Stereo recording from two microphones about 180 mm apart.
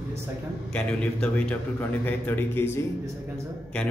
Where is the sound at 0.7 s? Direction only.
5° left (ahead or behind).